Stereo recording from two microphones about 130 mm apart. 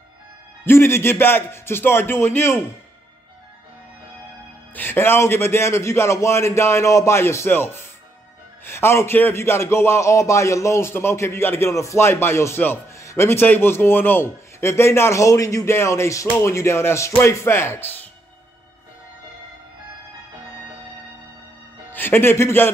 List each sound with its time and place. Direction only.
0.7 s a man's voice: 20° left (ahead or behind)
4.7 s a man's voice: 15° left (ahead or behind)
21.9 s a man's voice: 15° left (ahead or behind)